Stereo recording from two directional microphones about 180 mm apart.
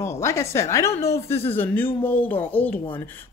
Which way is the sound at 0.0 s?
15° left (ahead or behind).